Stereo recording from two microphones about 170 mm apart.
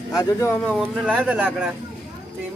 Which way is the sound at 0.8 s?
5° right (ahead or behind).